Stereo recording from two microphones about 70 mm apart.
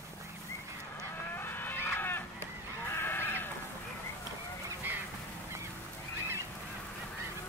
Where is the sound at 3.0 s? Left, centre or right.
Left.